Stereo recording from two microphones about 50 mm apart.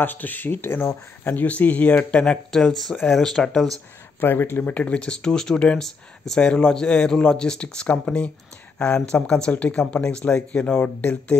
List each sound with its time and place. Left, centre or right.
0.0 s speech: left
2.5 s speech: centre
4.2 s speech: left
4.6 s speech: left
5.3 s speech: centre; by 11.3 s left